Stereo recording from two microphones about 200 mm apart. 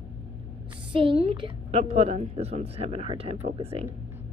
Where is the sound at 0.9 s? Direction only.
25° right (ahead or behind).